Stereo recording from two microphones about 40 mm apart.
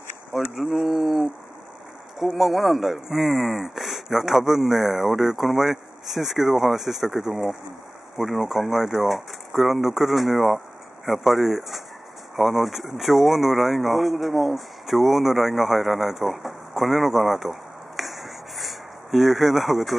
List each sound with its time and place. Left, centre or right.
0.6 s speech: centre